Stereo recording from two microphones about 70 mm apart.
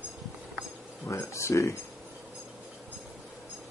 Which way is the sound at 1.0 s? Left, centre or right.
Left.